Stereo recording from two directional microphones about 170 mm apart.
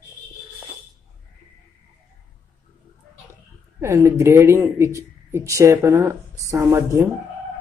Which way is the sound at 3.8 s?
15° right (ahead or behind).